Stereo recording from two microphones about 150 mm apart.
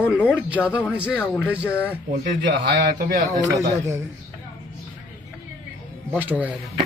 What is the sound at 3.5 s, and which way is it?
Speech, 20° right (ahead or behind).